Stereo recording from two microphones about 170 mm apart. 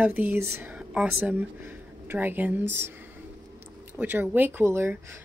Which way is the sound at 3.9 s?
10° right (ahead or behind).